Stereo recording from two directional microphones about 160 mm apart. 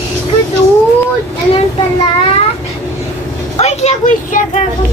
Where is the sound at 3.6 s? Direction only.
45° left (ahead or behind).